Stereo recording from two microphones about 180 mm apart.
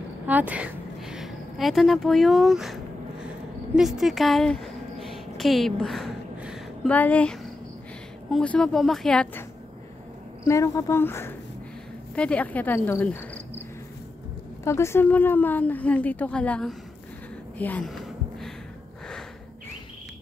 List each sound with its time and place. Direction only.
0.3 s a woman's voice: 10° right (ahead or behind)
5.0 s a sound: centre (ahead or behind)
6.9 s a woman's voice: 10° left (ahead or behind)
10.4 s a woman's voice: 15° left (ahead or behind)
14.6 s a woman's voice: 15° left (ahead or behind)
17.6 s a sound: 10° left (ahead or behind)